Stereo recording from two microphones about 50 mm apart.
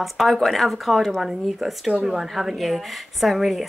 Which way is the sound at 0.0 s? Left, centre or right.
Centre.